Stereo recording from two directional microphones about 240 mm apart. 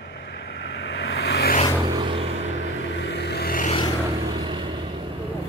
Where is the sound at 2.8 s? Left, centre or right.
Left.